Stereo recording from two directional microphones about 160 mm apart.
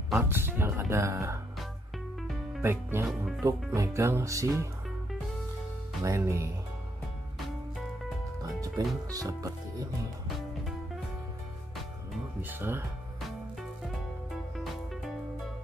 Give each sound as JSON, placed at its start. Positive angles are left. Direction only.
{"t": 0.2, "sound": "speech", "side_deg": -15}
{"t": 2.6, "sound": "speech", "side_deg": -15}
{"t": 3.1, "sound": "speech", "side_deg": 0}
{"t": 3.4, "sound": "speech", "side_deg": -20}
{"t": 6.0, "sound": "speech", "side_deg": -20}
{"t": 7.3, "sound": "music", "side_deg": 0}
{"t": 8.5, "sound": "music", "side_deg": -20}
{"t": 9.1, "sound": "speech", "side_deg": -20}
{"t": 12.4, "sound": "speech", "side_deg": -10}
{"t": 14.3, "sound": "music", "side_deg": 0}